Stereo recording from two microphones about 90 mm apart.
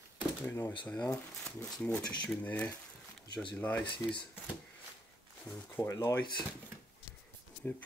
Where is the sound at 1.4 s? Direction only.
10° left (ahead or behind).